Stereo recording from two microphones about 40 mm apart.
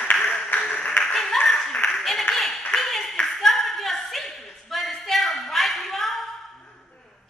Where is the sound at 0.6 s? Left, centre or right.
Left.